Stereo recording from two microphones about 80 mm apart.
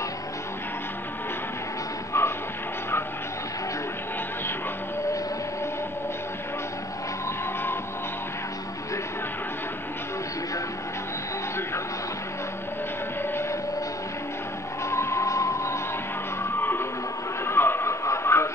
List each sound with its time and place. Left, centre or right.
2.1 s music: left
13.3 s vehicle: left
14.9 s music: left
17.5 s a sound: left